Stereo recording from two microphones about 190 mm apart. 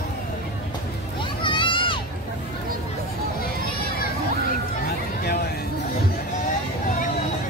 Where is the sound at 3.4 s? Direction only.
50° left (ahead or behind).